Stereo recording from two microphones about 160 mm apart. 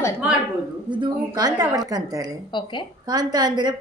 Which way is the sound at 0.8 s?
30° right (ahead or behind).